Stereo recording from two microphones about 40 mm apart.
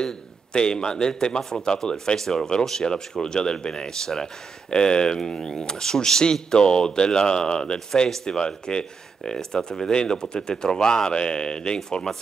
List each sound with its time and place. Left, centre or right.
0.0 s speech: centre